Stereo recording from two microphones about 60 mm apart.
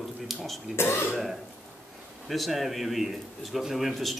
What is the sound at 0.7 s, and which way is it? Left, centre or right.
Speech, left.